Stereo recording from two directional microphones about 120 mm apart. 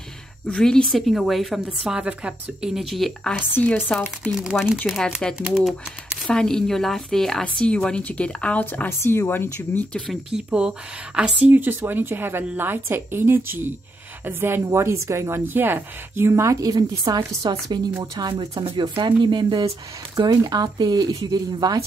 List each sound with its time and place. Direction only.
0.5 s a woman's voice: 5° left (ahead or behind)
3.5 s speech: 15° left (ahead or behind)
3.9 s a woman's voice: 5° right (ahead or behind); by 10.0 s 15° left (ahead or behind)
10.0 s a woman's voice: 5° right (ahead or behind); by 17.4 s 35° right (ahead or behind)
18.4 s speech: 35° right (ahead or behind)